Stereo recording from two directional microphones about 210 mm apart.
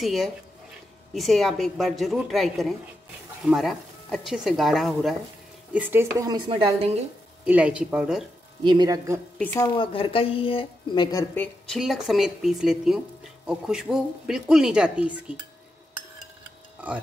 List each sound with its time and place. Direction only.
0.0 s a woman's voice: centre (ahead or behind); by 6.9 s 25° right (ahead or behind)
7.4 s speech: 5° right (ahead or behind)
8.6 s a woman's voice: 20° right (ahead or behind)
9.4 s a woman's voice: 10° left (ahead or behind)
9.8 s speech: 25° left (ahead or behind); by 15.3 s 5° right (ahead or behind)